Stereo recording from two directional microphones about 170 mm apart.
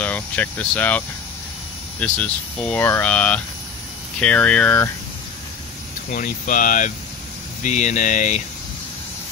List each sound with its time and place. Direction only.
0.0 s speech: 10° left (ahead or behind)
6.1 s speech: 50° left (ahead or behind)